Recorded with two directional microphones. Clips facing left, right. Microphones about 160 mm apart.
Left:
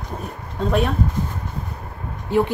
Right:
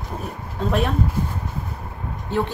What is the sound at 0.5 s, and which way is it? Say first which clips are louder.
Speech: left 2 dB; centre (ahead or behind).